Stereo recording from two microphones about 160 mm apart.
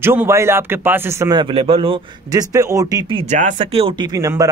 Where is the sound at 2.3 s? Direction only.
20° right (ahead or behind).